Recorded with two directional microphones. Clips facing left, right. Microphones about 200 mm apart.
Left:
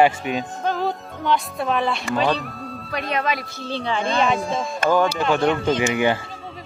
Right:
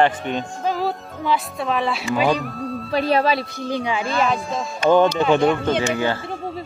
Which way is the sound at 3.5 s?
15° right (ahead or behind).